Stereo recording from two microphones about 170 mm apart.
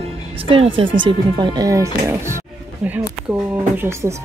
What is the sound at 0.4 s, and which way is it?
Speech, 35° right (ahead or behind).